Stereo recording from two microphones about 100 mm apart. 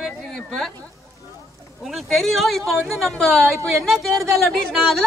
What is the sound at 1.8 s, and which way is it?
Speech, centre (ahead or behind).